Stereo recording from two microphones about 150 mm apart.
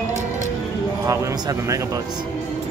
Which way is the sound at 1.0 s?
25° right (ahead or behind).